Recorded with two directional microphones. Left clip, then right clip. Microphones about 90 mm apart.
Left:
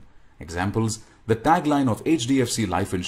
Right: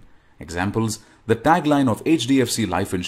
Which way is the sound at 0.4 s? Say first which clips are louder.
Right 2 dB; 20° right (ahead or behind).